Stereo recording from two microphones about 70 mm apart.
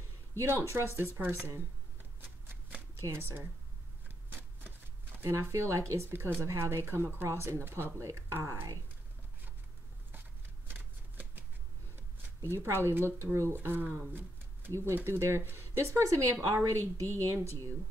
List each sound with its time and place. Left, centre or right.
0.4 s speech: right
3.1 s speech: right
4.3 s shuffling cards: right
6.0 s speech: right
6.4 s speech: right
10.7 s shuffling cards: right
12.5 s speech: right